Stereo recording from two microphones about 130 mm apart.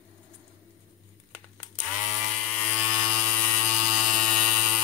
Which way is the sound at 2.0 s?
5° left (ahead or behind).